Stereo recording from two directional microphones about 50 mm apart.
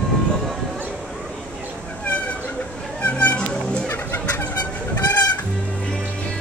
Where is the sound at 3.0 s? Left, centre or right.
Left.